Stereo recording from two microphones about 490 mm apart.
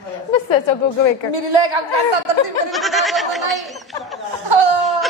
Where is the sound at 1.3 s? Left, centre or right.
Right.